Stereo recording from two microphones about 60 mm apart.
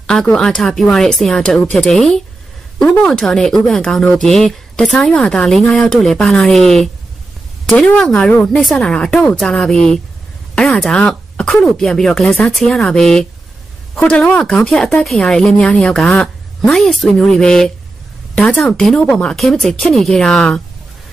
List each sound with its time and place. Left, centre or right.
0.0 s a woman's voice: centre
4.9 s a woman's voice: centre
8.3 s speech: left
8.7 s a woman's voice: centre
14.0 s a woman's voice: left
15.5 s a woman's voice: centre
19.3 s a woman's voice: centre